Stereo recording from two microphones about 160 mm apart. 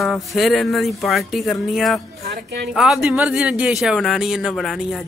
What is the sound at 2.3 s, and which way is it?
Speech, 90° right.